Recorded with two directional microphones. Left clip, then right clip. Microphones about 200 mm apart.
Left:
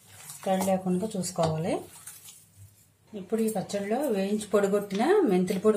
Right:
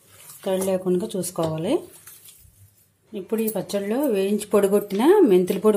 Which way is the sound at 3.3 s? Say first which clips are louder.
Right 3 dB; 40° right (ahead or behind).